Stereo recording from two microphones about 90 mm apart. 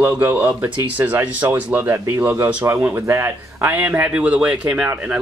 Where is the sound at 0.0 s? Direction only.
20° right (ahead or behind).